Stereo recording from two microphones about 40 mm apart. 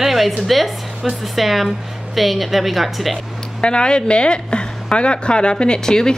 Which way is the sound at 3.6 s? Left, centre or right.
Left.